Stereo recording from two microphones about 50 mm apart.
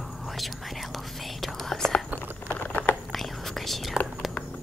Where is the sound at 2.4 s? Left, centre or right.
Left.